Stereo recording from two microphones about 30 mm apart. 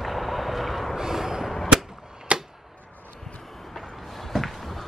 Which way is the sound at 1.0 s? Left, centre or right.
Centre.